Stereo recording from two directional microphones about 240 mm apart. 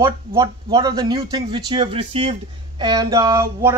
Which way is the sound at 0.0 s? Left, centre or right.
Centre.